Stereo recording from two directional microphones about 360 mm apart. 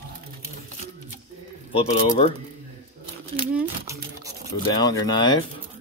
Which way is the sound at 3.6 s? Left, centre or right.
Centre.